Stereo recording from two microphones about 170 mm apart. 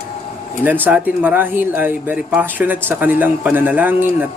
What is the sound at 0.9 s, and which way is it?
Speech, 10° right (ahead or behind).